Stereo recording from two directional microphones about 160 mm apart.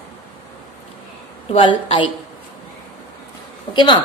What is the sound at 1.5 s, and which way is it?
Speech, 35° left (ahead or behind).